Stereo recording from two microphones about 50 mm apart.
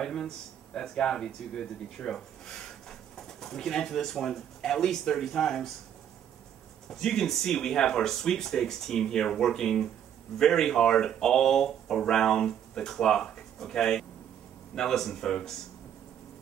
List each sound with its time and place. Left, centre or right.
0.0 s a sound: centre
0.7 s speech: centre
6.9 s speech: centre